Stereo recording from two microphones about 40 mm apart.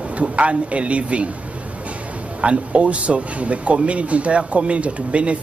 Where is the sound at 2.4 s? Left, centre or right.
Right.